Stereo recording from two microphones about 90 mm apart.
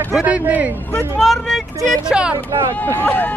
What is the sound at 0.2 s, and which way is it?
Speech, 15° right (ahead or behind).